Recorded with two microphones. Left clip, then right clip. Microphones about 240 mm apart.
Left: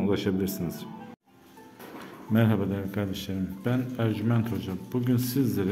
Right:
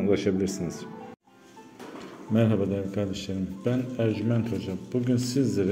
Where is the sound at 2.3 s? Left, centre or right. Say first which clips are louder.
Right 2 dB; centre.